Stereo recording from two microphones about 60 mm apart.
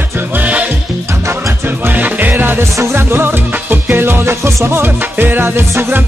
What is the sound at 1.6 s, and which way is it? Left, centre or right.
Music, right.